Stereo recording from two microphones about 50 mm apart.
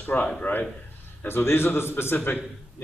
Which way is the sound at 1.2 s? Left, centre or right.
Left.